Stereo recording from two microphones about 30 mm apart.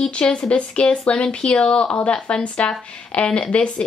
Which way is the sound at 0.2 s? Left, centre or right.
Left.